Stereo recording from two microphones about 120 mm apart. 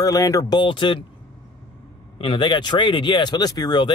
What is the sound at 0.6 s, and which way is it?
Speech, 40° left (ahead or behind).